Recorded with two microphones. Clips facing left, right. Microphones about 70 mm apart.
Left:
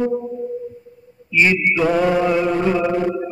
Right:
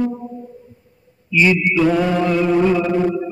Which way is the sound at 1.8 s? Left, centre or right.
Centre.